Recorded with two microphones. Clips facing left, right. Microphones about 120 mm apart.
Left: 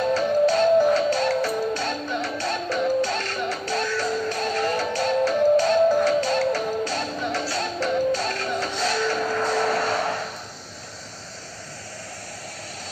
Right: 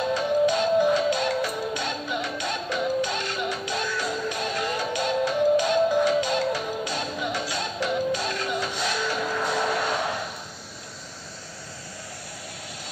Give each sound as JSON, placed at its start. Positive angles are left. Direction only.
{"t": 0.1, "sound": "music", "side_deg": -15}